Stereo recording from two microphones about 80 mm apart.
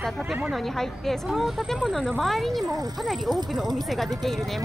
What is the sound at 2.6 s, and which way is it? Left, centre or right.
Speech, right.